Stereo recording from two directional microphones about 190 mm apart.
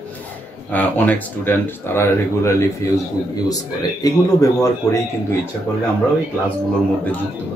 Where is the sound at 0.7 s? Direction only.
10° left (ahead or behind).